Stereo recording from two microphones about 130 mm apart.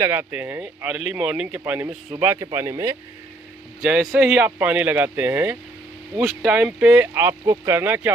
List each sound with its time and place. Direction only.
0.0 s speech: 20° right (ahead or behind)
3.8 s speech: 5° right (ahead or behind)